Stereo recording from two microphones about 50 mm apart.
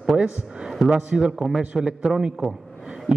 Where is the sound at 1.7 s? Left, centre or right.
Centre.